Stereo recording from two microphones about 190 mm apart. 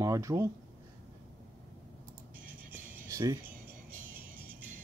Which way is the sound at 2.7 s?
15° right (ahead or behind).